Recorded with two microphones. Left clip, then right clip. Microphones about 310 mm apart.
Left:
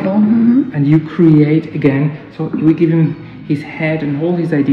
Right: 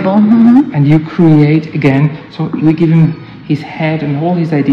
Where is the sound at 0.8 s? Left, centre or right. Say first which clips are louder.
Right 2 dB; centre.